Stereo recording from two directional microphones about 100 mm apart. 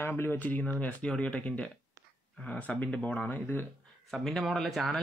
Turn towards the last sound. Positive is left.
turn(degrees=0)  # may be behind; listen again after turning